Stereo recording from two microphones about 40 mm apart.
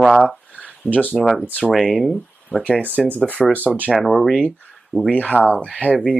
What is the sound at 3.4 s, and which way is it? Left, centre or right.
Speech, left.